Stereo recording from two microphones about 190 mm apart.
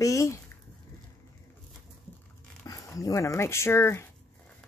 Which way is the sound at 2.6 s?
20° left (ahead or behind).